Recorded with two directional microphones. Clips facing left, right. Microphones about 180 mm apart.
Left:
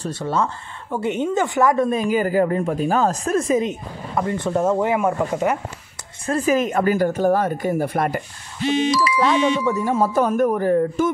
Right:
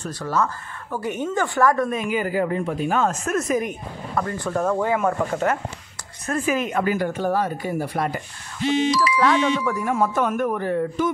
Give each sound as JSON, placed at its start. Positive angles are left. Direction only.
{"t": 0.0, "sound": "speech", "side_deg": 25}
{"t": 6.2, "sound": "speech", "side_deg": 35}
{"t": 9.2, "sound": "speech", "side_deg": 20}